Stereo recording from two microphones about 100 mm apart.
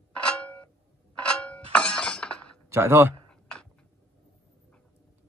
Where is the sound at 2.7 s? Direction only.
25° right (ahead or behind).